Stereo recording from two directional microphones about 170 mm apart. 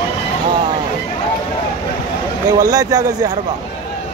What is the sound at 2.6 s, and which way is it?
Speech, 20° right (ahead or behind).